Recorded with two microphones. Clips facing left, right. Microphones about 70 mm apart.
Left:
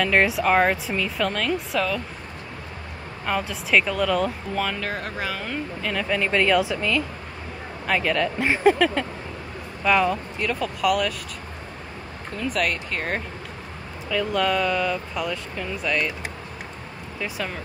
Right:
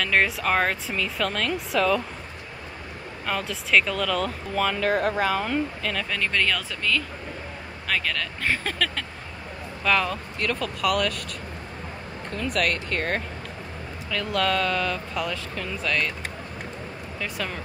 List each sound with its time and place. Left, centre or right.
0.0 s speech: centre
3.3 s speech: centre
12.3 s speech: centre
17.2 s speech: centre